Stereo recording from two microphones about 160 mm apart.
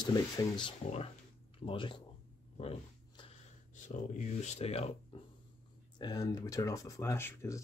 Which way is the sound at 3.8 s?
45° left (ahead or behind).